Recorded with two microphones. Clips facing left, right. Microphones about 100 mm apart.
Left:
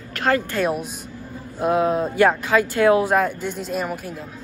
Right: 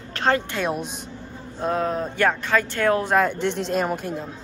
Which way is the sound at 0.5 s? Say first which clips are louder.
Left 3 dB; 5° left (ahead or behind).